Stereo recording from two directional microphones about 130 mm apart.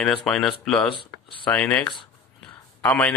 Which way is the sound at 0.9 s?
40° left (ahead or behind).